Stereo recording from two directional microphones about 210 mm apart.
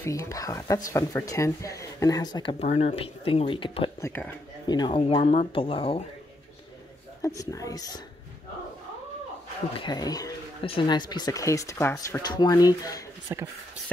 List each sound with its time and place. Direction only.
0.0 s speech: 15° left (ahead or behind)
4.0 s speech: 10° left (ahead or behind)
4.6 s speech: 20° left (ahead or behind)
7.2 s speech: 15° left (ahead or behind)
9.8 s speech: 20° left (ahead or behind)
13.3 s speech: 15° right (ahead or behind)